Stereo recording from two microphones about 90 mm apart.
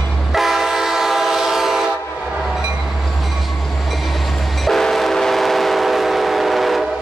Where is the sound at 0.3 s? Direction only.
Centre (ahead or behind).